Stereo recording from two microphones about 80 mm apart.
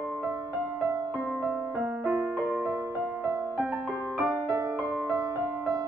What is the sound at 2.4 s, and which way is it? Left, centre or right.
Music, centre.